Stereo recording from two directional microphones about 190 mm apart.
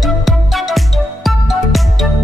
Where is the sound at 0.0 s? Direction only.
Centre (ahead or behind).